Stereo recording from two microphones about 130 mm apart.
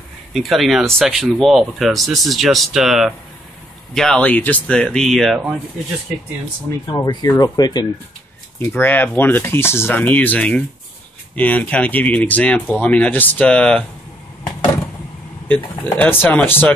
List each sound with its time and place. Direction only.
0.3 s speech: centre (ahead or behind)
6.9 s speech: 30° left (ahead or behind)
8.5 s speech: 20° left (ahead or behind)
15.4 s speech: 15° left (ahead or behind)